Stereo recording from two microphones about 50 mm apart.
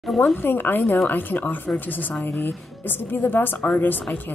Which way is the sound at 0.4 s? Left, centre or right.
Left.